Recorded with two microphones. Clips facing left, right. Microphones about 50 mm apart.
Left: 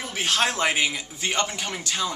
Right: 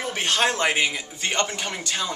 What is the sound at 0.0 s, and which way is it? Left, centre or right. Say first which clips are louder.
Speech: right 2 dB; centre.